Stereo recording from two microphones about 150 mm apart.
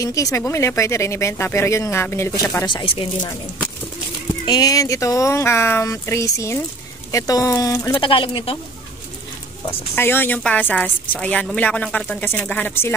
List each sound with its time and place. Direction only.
0.0 s a woman's voice: 20° left (ahead or behind)
2.6 s speech: 35° left (ahead or behind)
4.5 s speech: 25° left (ahead or behind)
8.0 s speech: 35° left (ahead or behind)
9.7 s a woman's voice: 15° left (ahead or behind)